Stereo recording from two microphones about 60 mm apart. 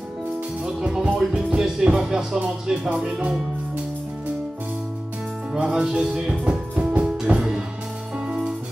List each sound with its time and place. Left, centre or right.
0.7 s music: centre
1.3 s speech: centre
5.5 s music: centre